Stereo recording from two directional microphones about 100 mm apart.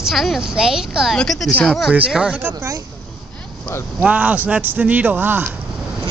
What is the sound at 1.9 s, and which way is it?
Speech, 10° right (ahead or behind).